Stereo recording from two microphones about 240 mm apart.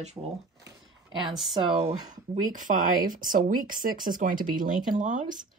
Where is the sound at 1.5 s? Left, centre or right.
Centre.